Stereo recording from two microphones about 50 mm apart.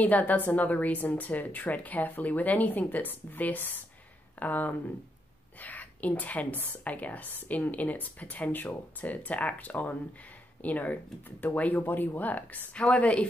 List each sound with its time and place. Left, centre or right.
0.0 s speech: left
11.8 s speech: left
12.7 s a woman's voice: left